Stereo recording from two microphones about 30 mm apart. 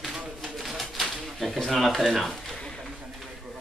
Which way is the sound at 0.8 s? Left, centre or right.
Centre.